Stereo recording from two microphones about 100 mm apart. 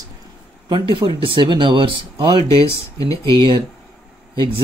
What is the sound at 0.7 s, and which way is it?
Speech, 55° right (ahead or behind).